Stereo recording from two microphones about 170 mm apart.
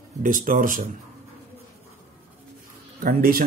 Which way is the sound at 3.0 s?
60° right (ahead or behind).